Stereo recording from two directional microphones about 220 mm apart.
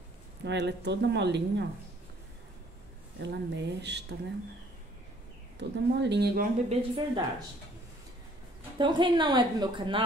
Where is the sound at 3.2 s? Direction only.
50° right (ahead or behind).